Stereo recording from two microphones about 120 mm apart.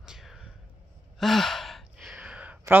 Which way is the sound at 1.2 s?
Centre (ahead or behind).